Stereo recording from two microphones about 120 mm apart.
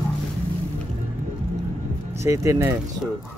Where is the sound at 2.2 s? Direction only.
25° right (ahead or behind).